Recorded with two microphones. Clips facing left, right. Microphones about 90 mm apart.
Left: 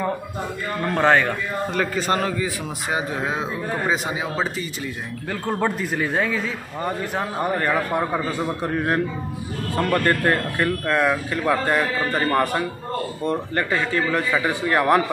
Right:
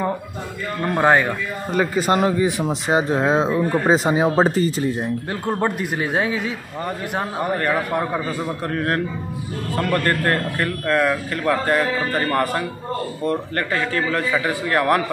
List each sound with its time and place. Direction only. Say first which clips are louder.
0.8 s a man's voice: right 1 dB; 15° right (ahead or behind)
2.3 s speech: right 7 dB; 30° right (ahead or behind)
7.5 s a man's voice: right 1 dB; 5° left (ahead or behind)
10.0 s speech: even; 15° left (ahead or behind)